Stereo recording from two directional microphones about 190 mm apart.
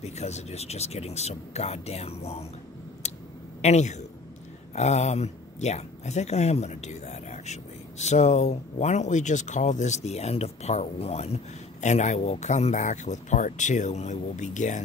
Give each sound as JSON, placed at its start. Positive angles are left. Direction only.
{"t": 0.0, "sound": "speech", "side_deg": 35}
{"t": 3.0, "sound": "a sound", "side_deg": 35}
{"t": 3.6, "sound": "speech", "side_deg": 35}